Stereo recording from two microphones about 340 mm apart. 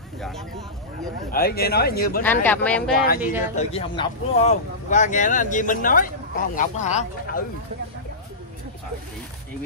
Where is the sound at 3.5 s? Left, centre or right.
Centre.